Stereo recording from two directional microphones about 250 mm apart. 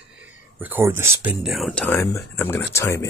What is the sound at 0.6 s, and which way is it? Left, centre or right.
Speech, centre.